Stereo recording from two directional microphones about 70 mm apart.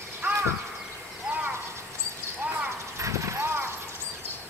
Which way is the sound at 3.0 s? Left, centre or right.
Right.